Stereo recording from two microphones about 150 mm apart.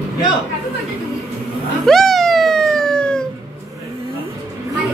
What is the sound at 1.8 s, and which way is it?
Music, centre (ahead or behind).